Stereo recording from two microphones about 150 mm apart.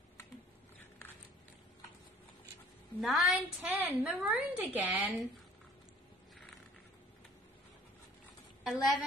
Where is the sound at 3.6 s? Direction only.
10° right (ahead or behind).